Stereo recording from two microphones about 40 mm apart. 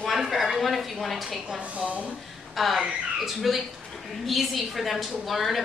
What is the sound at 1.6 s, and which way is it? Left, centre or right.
Speech, right.